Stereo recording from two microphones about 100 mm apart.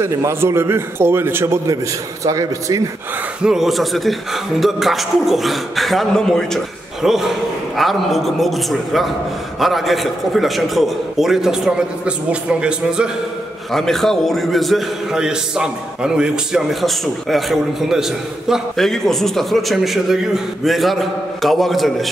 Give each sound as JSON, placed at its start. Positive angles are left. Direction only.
{"t": 0.0, "sound": "a man's voice", "side_deg": -25}
{"t": 3.4, "sound": "speech", "side_deg": -5}
{"t": 13.7, "sound": "speech", "side_deg": 5}